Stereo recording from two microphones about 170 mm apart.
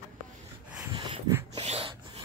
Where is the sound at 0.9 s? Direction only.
30° right (ahead or behind).